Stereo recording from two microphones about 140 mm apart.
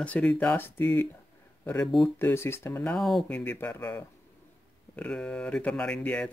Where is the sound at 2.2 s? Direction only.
15° left (ahead or behind).